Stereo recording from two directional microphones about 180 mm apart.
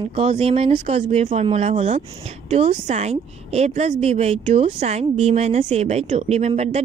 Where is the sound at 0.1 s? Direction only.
35° right (ahead or behind).